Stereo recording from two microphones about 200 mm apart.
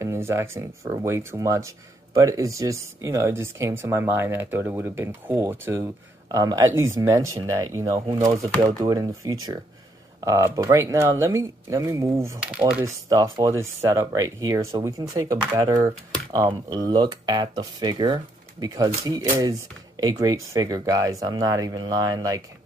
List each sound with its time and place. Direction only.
0.0 s speech: 15° right (ahead or behind)
13.1 s speech: 15° right (ahead or behind)